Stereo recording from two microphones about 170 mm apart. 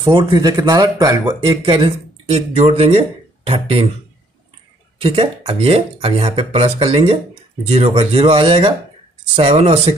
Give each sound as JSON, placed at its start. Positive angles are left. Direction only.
{"t": 0.0, "sound": "speech", "side_deg": -25}
{"t": 5.0, "sound": "speech", "side_deg": -30}